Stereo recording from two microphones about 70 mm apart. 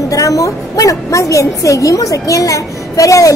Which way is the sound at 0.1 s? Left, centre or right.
Left.